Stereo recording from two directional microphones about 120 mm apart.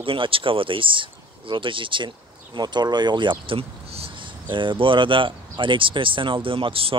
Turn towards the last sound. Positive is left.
turn(degrees=-50)  # may be behind; listen again after turning